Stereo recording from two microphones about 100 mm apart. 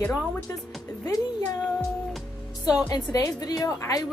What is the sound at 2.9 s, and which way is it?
Speech, 40° left (ahead or behind).